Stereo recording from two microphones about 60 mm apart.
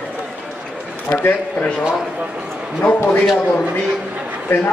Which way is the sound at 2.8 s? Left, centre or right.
Left.